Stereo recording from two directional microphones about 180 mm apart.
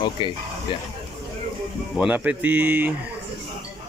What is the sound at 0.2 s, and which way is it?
Speech, 25° left (ahead or behind).